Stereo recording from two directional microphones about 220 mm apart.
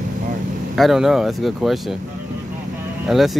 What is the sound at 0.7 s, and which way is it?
Speech, centre (ahead or behind).